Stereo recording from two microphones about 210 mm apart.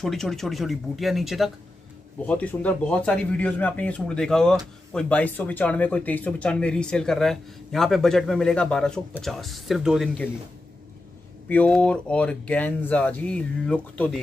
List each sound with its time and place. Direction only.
0.0 s speech: centre (ahead or behind)
11.4 s speech: 5° left (ahead or behind)